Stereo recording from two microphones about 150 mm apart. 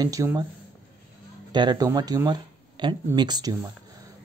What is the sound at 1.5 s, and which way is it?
Speech, 25° right (ahead or behind).